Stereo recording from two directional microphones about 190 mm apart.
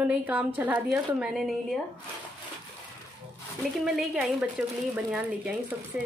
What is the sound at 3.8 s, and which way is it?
Speech, centre (ahead or behind).